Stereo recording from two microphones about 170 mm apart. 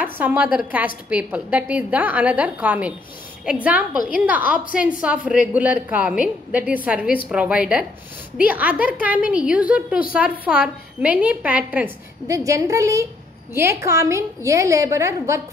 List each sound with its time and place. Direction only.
0.0 s a woman's voice: 10° right (ahead or behind)